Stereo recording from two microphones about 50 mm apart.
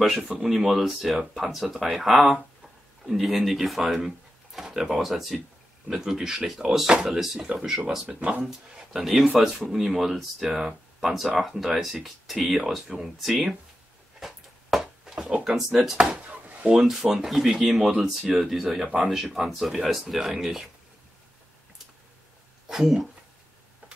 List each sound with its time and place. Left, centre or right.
0.0 s speech: centre
8.2 s speech: right
8.5 s speech: centre
14.2 s a sound: centre
15.5 s speech: centre
16.3 s chopping: right
16.7 s speech: centre
22.7 s speech: centre